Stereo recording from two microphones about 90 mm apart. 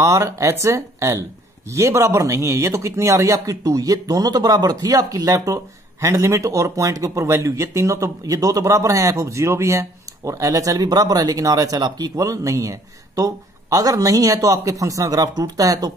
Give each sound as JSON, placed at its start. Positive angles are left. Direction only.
{"t": 0.0, "sound": "speech", "side_deg": -35}